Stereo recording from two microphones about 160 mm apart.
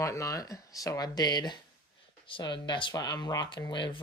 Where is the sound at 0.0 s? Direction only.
20° left (ahead or behind).